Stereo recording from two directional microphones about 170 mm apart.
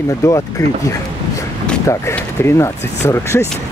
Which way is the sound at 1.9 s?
15° left (ahead or behind).